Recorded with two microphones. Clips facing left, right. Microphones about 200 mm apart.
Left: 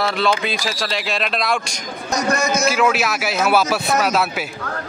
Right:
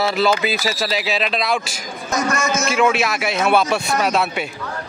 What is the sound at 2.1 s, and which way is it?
Speech, 35° left (ahead or behind).